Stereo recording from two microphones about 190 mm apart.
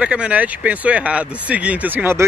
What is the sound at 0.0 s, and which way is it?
Speech, 5° right (ahead or behind).